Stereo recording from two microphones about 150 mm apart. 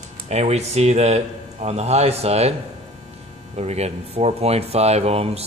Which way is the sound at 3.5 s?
45° right (ahead or behind).